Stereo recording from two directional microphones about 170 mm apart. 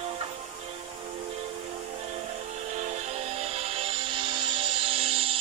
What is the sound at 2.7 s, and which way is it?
Music, 40° right (ahead or behind).